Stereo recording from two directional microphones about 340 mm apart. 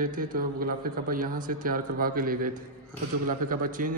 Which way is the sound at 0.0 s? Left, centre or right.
Right.